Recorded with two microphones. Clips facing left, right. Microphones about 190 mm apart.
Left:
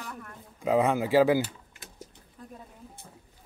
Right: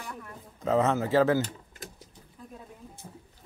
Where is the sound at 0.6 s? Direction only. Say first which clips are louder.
Left 1 dB; 10° left (ahead or behind).